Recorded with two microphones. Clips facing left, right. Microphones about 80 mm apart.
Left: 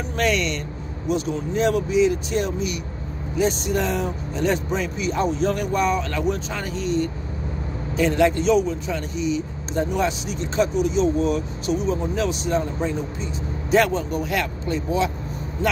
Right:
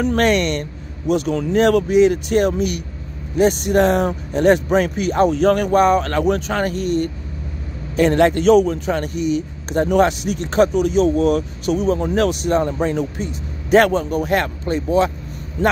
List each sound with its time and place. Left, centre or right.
0.0 s a man's voice: right